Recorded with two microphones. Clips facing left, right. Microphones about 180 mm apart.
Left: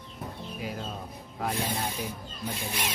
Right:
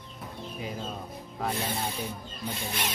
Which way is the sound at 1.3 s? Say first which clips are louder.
Even; 5° left (ahead or behind).